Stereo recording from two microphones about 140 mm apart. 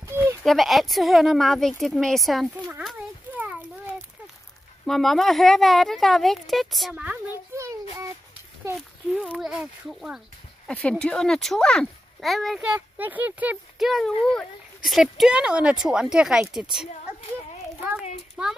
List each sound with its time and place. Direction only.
0.0 s a sound: 20° right (ahead or behind)
0.4 s speech: centre (ahead or behind)
3.3 s a sound: 10° right (ahead or behind)
4.8 s speech: centre (ahead or behind)
6.9 s a sound: 10° right (ahead or behind)
9.4 s speech: 5° right (ahead or behind)
10.7 s speech: 10° left (ahead or behind)
12.7 s speech: 10° right (ahead or behind)
18.4 s speech: 5° right (ahead or behind)